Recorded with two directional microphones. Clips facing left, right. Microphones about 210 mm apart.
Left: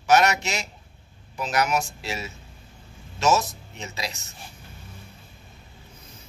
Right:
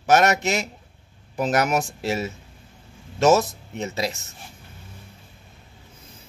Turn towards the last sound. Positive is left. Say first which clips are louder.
# right 7 dB
turn(degrees=-50)  # may be behind; listen again after turning